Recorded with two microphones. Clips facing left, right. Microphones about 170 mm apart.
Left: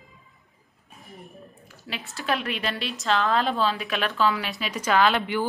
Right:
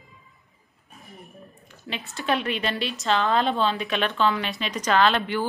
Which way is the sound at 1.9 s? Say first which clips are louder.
Right 2 dB; centre (ahead or behind).